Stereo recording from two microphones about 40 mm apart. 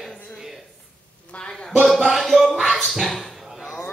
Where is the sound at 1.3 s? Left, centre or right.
Left.